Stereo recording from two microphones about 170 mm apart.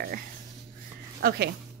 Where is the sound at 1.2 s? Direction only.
70° right (ahead or behind).